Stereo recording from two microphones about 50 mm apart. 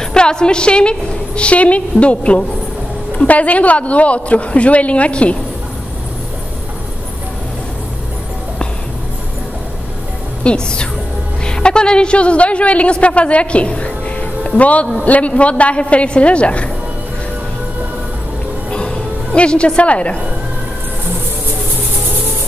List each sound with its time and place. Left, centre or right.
0.0 s a woman's voice: centre
10.4 s a woman's voice: centre
18.7 s music: centre